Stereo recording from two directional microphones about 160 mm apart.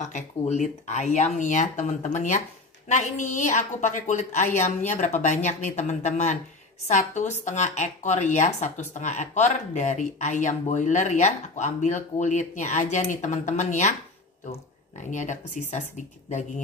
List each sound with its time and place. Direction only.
0.0 s speech: 45° left (ahead or behind)
15.0 s speech: 50° left (ahead or behind)